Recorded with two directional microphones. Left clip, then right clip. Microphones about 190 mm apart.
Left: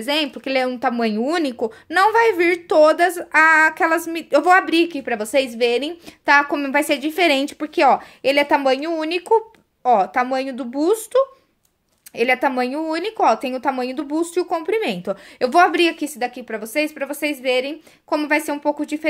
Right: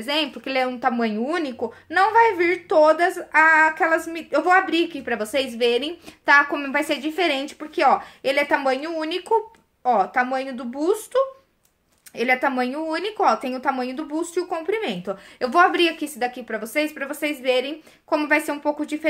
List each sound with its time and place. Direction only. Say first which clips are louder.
0.0 s a woman's voice: left 3 dB; 40° left (ahead or behind)